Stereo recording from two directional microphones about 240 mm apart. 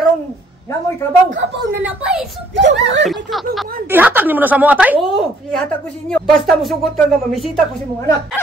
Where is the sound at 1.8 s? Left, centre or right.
Centre.